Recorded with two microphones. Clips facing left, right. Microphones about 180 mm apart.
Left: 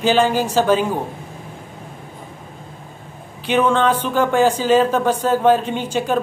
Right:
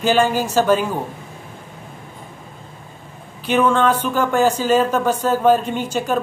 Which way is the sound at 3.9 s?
10° right (ahead or behind).